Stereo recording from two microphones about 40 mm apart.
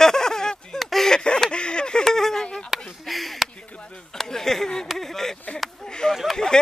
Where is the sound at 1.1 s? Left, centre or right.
Centre.